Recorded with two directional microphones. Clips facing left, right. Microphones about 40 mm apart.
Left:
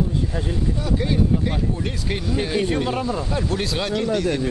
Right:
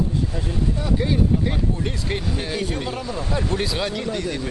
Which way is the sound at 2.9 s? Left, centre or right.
Left.